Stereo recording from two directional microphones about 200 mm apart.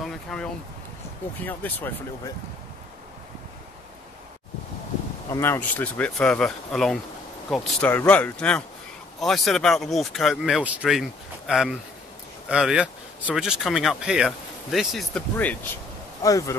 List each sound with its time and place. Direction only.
0.0 s a sound: 5° left (ahead or behind)
1.4 s speech: 10° left (ahead or behind)
5.3 s speech: 10° left (ahead or behind)
16.2 s speech: 15° left (ahead or behind)